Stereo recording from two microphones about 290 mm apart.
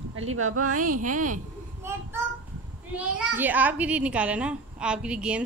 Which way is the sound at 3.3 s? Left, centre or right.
Centre.